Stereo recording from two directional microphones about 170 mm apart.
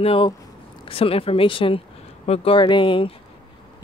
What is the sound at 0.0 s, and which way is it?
Speech, 35° left (ahead or behind).